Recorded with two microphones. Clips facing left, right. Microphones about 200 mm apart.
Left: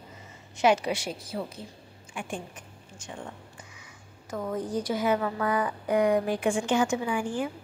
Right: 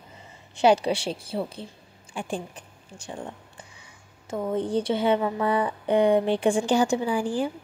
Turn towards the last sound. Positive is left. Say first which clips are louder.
# right 4 dB
turn(degrees=-30)  # may be behind; listen again after turning